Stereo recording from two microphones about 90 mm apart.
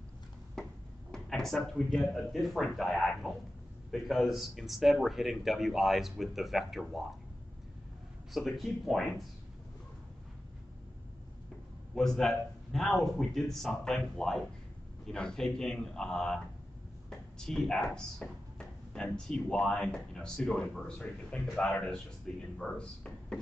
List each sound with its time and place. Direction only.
0.6 s a sound: 5° left (ahead or behind)
1.1 s speech: 5° left (ahead or behind)
8.3 s speech: centre (ahead or behind)
11.9 s speech: 5° left (ahead or behind)
17.1 s drawer open or close: 5° left (ahead or behind)
19.1 s speech: 5° left (ahead or behind)